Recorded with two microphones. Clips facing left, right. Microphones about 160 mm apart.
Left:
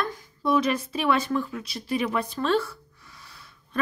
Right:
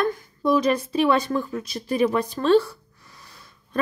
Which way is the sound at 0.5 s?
35° right (ahead or behind).